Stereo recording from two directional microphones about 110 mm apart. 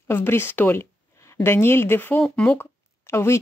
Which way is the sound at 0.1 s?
20° left (ahead or behind).